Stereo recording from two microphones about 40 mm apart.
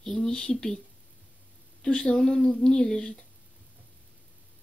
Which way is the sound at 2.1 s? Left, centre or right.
Centre.